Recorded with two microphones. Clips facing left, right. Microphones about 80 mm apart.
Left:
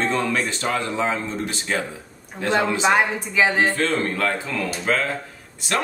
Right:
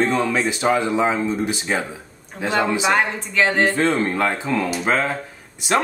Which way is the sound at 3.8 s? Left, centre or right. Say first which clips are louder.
Right 3 dB; right.